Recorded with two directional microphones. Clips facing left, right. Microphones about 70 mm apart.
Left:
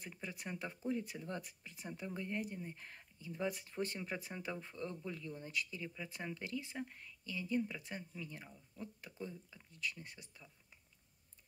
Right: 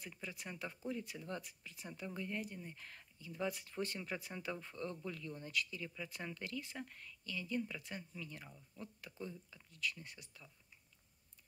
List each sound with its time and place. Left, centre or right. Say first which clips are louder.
0.0 s speech: left 2 dB; left